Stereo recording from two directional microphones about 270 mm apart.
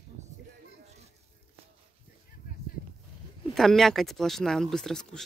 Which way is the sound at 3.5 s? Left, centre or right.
Centre.